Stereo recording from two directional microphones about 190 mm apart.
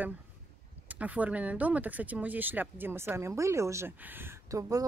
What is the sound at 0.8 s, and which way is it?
Speech, 10° right (ahead or behind).